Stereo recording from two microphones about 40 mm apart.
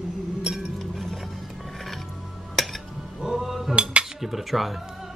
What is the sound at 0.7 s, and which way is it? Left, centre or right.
Music, centre.